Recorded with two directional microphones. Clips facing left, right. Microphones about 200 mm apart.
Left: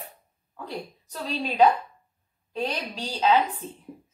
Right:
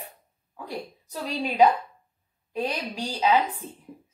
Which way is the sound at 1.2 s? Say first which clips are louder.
Even; 10° right (ahead or behind).